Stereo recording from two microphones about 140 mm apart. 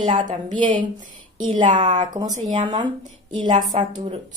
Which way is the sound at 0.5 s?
35° right (ahead or behind).